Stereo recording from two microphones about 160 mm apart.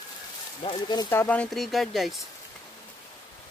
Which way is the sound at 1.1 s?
10° left (ahead or behind).